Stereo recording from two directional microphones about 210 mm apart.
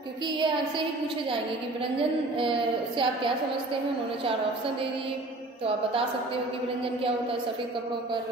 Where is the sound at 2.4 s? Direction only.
25° right (ahead or behind).